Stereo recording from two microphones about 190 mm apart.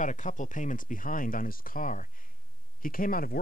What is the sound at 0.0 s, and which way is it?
Speech, 40° left (ahead or behind).